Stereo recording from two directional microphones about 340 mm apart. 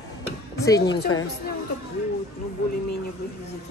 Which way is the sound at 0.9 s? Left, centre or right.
Left.